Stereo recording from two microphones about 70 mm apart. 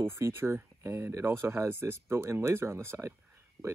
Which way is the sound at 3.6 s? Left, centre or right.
Centre.